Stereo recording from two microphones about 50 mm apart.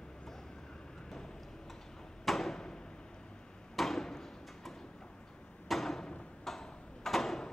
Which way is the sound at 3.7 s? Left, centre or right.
Centre.